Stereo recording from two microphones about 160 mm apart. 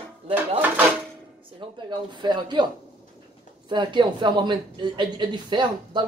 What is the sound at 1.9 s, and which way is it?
A woman's voice, 30° right (ahead or behind).